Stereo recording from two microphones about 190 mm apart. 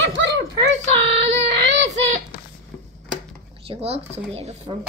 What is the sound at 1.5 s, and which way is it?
Child singing, 70° right (ahead or behind).